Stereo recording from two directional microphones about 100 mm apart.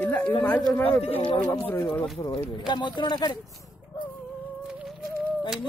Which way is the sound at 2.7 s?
50° left (ahead or behind).